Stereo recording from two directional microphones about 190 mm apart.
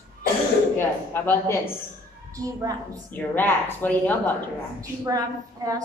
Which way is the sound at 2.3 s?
15° right (ahead or behind).